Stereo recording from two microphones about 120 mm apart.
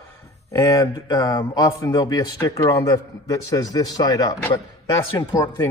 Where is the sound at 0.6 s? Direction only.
25° left (ahead or behind).